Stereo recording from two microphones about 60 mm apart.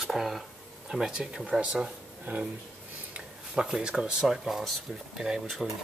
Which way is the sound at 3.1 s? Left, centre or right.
Centre.